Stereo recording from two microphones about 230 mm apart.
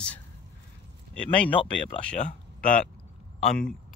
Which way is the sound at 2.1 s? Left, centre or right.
Left.